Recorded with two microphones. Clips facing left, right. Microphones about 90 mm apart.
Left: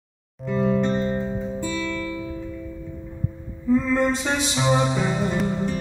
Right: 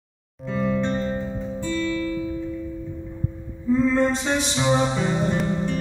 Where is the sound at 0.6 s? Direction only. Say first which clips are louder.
Left 2 dB; 35° left (ahead or behind).